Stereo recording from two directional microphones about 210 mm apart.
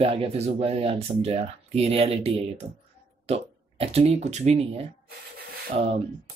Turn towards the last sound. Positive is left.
turn(degrees=-30)  # may be behind; listen again after turning